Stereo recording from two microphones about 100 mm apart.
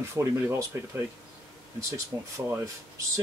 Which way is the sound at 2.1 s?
30° right (ahead or behind).